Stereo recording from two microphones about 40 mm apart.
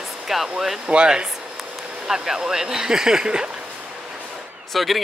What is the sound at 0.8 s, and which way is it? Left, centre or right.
Speech, right.